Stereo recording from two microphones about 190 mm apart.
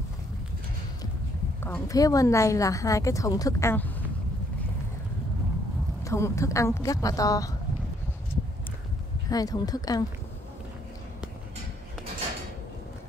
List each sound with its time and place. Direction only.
1.6 s a woman's voice: 15° left (ahead or behind)
6.0 s a woman's voice: 15° left (ahead or behind)
9.3 s speech: 20° left (ahead or behind)